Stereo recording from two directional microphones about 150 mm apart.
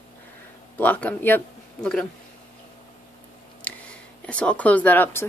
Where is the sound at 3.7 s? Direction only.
5° left (ahead or behind).